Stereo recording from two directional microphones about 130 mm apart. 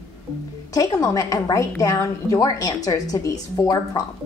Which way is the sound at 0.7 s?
25° left (ahead or behind).